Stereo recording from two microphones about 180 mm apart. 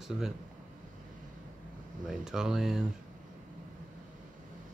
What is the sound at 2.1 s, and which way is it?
Speech, 5° right (ahead or behind).